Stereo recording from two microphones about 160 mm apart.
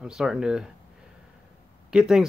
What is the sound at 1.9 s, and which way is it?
Speech, 5° right (ahead or behind).